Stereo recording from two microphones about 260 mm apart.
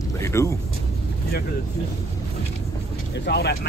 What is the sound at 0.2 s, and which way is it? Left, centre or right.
Speech, centre.